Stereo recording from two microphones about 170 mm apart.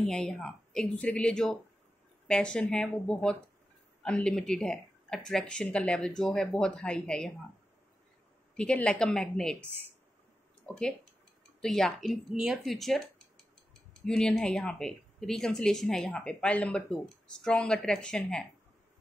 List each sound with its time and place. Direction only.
0.0 s speech: 5° left (ahead or behind)
8.5 s speech: 5° left (ahead or behind)
10.7 s speech: 5° left (ahead or behind)
14.0 s speech: 5° left (ahead or behind)